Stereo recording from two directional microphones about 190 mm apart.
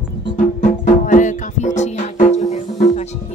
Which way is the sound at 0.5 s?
40° left (ahead or behind).